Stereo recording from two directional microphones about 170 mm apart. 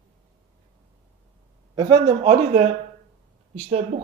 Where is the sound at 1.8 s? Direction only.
40° right (ahead or behind).